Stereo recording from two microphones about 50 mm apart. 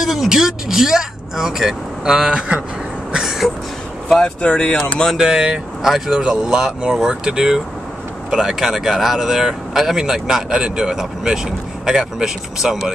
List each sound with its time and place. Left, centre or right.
0.0 s speech: centre; by 2.6 s right
3.1 s a sound: centre
4.4 s speech: left
5.1 s speech: centre